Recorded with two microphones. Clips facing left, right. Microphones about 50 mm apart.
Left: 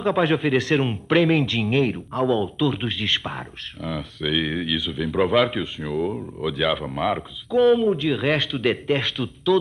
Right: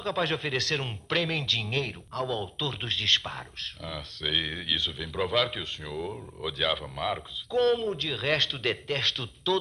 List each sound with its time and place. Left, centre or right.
0.0 s speech: left
5.9 s speech: centre
6.4 s speech: left